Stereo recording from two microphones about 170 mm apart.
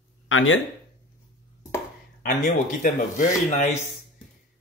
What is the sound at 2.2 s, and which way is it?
Speech, 50° left (ahead or behind).